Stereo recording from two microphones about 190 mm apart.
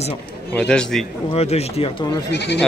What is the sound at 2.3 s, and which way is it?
Speech, 60° left (ahead or behind).